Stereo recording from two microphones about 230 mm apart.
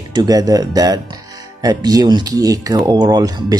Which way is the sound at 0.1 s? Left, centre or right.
Centre.